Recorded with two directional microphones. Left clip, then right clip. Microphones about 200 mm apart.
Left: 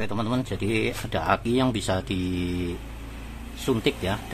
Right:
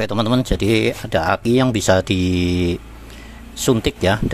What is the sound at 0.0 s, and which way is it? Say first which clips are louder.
Speech: right 9 dB; 40° right (ahead or behind).